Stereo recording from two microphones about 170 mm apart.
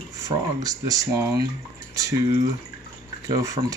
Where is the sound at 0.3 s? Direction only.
20° right (ahead or behind).